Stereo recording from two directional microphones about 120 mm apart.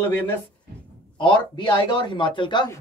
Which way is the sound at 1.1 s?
40° left (ahead or behind).